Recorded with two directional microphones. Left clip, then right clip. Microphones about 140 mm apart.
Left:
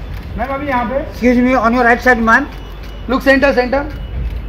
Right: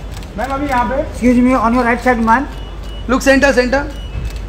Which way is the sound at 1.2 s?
10° left (ahead or behind).